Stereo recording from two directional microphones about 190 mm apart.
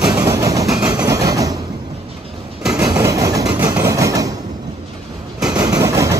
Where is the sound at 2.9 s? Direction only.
15° right (ahead or behind).